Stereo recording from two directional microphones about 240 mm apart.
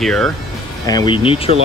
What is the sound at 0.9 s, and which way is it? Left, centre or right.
Speech, centre.